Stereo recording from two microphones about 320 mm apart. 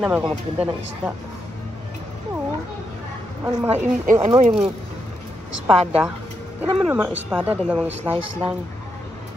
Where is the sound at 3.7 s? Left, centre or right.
Right.